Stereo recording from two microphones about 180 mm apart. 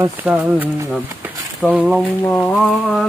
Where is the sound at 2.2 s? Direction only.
10° left (ahead or behind).